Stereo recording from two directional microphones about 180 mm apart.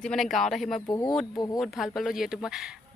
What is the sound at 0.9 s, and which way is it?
Speech, 20° left (ahead or behind).